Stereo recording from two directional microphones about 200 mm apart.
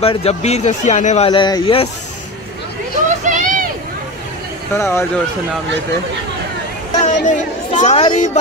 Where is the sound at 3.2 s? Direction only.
40° right (ahead or behind).